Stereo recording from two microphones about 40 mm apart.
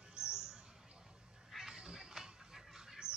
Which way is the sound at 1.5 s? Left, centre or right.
Centre.